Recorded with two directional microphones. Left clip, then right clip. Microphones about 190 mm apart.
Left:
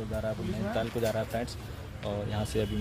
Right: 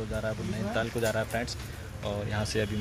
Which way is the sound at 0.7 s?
5° right (ahead or behind).